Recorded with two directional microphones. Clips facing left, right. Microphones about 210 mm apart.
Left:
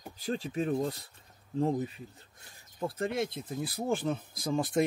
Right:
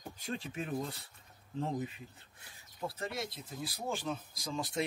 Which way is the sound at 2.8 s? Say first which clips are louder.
Left 7 dB; 50° left (ahead or behind).